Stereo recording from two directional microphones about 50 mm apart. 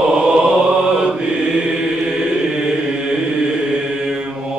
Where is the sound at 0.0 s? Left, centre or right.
Centre.